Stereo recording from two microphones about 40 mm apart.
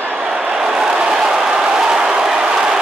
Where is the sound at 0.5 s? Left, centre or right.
Centre.